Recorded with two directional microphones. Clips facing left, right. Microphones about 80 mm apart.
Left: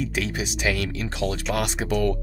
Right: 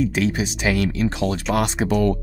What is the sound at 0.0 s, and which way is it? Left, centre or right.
Speech, right.